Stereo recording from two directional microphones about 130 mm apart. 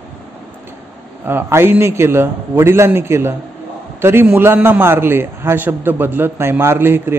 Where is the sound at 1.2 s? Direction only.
15° right (ahead or behind).